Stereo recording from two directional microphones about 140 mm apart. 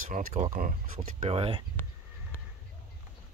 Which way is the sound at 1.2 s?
45° right (ahead or behind).